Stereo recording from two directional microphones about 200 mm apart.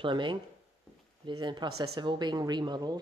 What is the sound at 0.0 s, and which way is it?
Speech, 25° right (ahead or behind).